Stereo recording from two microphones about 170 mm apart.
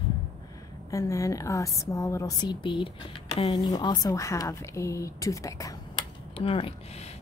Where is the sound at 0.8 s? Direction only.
20° left (ahead or behind).